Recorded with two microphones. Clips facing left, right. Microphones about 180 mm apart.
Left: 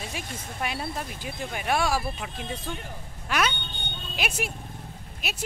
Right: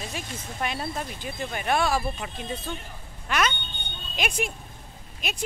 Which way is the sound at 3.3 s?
5° left (ahead or behind).